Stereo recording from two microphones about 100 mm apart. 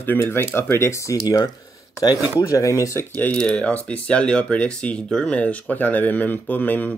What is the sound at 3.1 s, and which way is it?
Speech, 10° left (ahead or behind).